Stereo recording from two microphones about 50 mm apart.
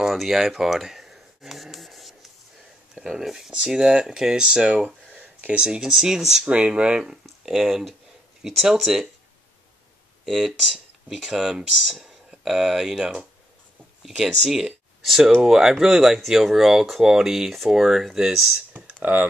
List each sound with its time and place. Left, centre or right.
0.1 s a sound: centre
2.9 s speech: centre
5.1 s speech: right; by 6.5 s centre
6.5 s speech: right; by 9.1 s centre
10.2 s speech: centre
18.7 s computer keyboard: right